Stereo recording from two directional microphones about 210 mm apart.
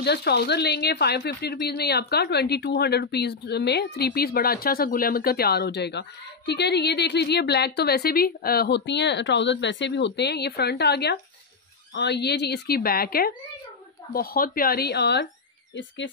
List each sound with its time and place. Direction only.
0.0 s a woman's voice: 50° left (ahead or behind)